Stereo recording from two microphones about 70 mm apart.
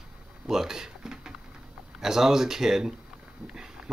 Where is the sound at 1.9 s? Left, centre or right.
Centre.